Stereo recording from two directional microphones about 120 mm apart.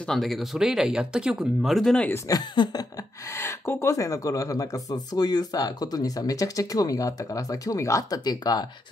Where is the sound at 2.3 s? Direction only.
35° left (ahead or behind).